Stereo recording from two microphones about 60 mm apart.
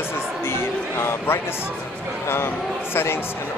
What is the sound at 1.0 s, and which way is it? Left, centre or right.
Speech, left.